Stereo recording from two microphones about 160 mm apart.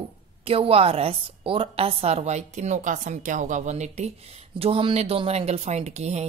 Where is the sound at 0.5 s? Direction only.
35° right (ahead or behind).